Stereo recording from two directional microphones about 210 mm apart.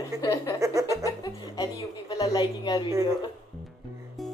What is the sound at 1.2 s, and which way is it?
Music, 20° left (ahead or behind).